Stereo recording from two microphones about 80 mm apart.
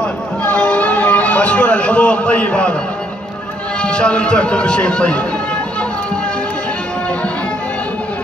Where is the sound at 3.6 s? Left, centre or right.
Centre.